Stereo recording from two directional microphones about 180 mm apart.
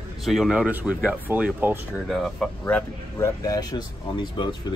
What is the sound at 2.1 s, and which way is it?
Speech, 5° left (ahead or behind).